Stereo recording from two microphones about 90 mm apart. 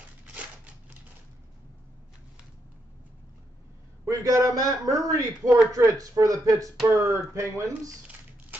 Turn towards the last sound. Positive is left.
turn(degrees=-35)  # may be behind; listen again after turning